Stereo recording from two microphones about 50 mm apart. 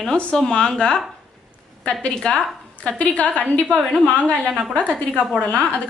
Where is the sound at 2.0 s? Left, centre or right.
Left.